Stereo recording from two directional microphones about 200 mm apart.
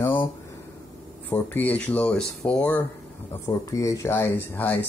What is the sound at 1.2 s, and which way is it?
Speech, 10° left (ahead or behind).